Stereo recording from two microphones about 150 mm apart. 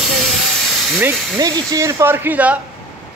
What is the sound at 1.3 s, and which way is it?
Speech, 25° right (ahead or behind).